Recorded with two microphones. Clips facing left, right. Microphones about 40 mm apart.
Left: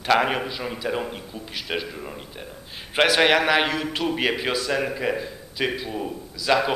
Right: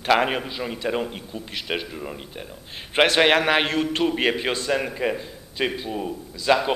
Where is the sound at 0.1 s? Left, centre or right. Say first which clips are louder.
Even; centre.